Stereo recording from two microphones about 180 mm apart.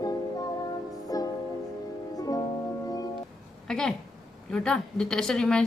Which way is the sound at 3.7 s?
5° left (ahead or behind).